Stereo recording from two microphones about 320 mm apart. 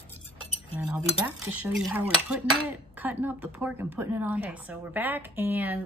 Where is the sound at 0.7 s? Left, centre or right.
Centre.